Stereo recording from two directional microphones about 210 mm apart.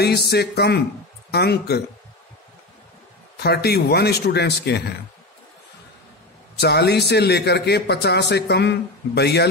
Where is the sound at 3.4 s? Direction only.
50° left (ahead or behind).